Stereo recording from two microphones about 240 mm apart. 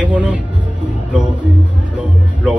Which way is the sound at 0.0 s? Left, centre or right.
Centre.